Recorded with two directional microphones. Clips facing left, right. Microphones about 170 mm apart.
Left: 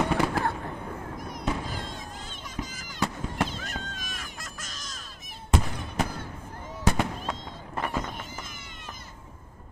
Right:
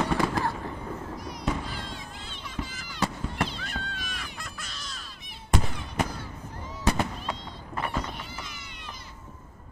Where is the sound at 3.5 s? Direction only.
45° left (ahead or behind).